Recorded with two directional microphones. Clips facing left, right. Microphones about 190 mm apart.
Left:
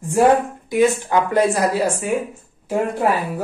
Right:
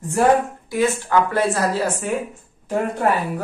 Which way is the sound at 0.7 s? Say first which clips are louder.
Left 5 dB; 15° left (ahead or behind).